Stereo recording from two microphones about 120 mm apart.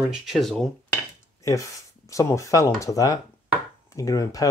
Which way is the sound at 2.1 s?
25° left (ahead or behind).